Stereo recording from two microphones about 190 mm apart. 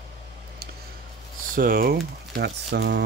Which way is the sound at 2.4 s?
65° right (ahead or behind).